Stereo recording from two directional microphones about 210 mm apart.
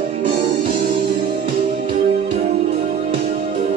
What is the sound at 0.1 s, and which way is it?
Music, 30° right (ahead or behind).